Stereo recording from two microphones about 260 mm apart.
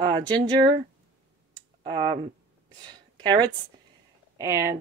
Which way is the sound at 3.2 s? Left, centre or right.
Centre.